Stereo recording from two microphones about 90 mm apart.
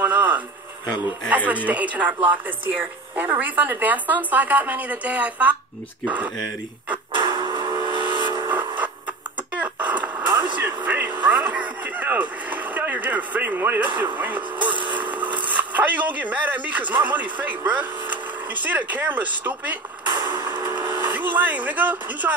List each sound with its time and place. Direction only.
0.0 s a sound: 20° right (ahead or behind)
1.3 s a woman's voice: 15° right (ahead or behind)
7.1 s vehicle: 60° right (ahead or behind)
8.5 s a sound: 20° right (ahead or behind)
9.6 s radio: 15° right (ahead or behind)
11.2 s a sound: 20° right (ahead or behind)
14.1 s speech: 20° right (ahead or behind)
20.2 s music: 50° right (ahead or behind)
20.4 s speech: 25° right (ahead or behind)